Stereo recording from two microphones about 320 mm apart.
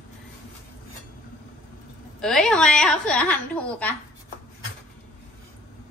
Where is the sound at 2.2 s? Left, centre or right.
Centre.